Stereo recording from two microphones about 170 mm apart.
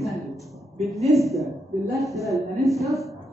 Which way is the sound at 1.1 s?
Centre (ahead or behind).